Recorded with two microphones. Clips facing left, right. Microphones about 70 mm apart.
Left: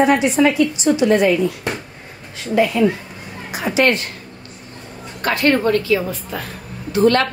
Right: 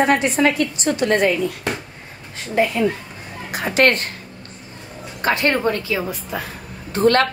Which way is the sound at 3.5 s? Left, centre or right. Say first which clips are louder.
Even; right.